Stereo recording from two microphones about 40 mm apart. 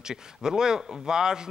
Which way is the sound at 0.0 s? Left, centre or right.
Centre.